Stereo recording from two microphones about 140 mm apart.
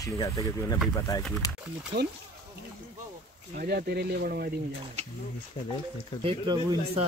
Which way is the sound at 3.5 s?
90° right.